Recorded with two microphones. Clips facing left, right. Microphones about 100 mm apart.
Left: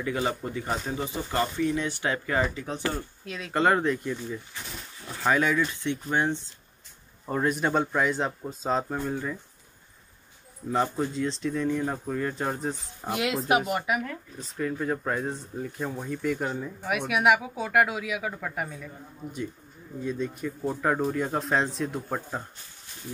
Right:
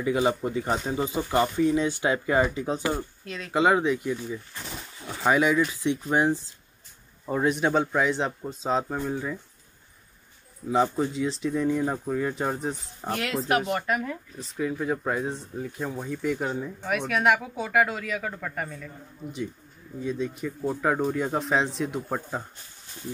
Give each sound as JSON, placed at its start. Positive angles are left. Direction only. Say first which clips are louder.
{"t": 0.0, "sound": "speech", "louder": "right 5 dB", "side_deg": -15}
{"t": 3.3, "sound": "speech", "louder": "right 1 dB", "side_deg": 0}
{"t": 10.7, "sound": "speech", "louder": "right 3 dB", "side_deg": 0}
{"t": 13.5, "sound": "speech", "louder": "right 1 dB", "side_deg": 10}
{"t": 14.6, "sound": "speech", "louder": "right 1 dB", "side_deg": -5}
{"t": 20.0, "sound": "speech", "louder": "right 1 dB", "side_deg": 0}